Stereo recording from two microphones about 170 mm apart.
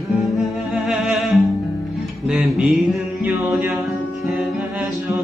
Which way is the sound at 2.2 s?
5° right (ahead or behind).